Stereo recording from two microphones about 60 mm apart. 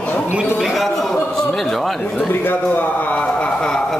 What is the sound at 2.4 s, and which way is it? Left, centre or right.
Speech, left.